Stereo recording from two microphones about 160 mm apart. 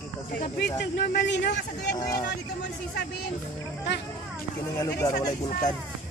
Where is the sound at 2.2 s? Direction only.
90° left.